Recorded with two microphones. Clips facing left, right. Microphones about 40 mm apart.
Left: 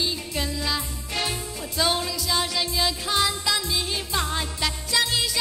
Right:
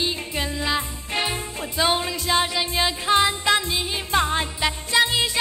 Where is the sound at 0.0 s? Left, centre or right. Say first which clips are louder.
Right 2 dB; right.